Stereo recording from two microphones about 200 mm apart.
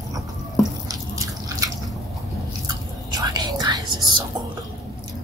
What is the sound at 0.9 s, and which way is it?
Drip, 15° right (ahead or behind).